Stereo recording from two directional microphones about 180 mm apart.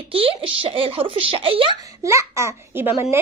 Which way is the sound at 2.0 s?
15° right (ahead or behind).